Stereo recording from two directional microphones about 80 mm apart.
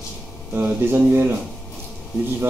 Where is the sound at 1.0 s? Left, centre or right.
Right.